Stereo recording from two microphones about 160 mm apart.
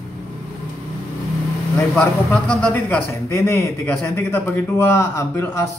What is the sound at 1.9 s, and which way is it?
A man's voice, 5° left (ahead or behind).